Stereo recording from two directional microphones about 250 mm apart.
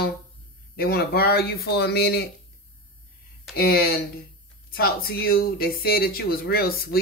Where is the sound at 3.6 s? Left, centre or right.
Left.